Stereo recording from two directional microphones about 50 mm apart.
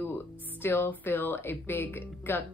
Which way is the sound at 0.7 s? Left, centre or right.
Left.